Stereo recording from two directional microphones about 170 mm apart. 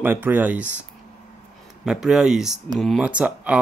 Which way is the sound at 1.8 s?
Centre (ahead or behind).